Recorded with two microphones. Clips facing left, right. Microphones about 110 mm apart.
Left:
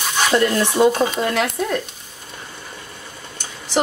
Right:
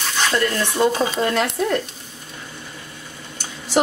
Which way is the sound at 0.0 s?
10° left (ahead or behind).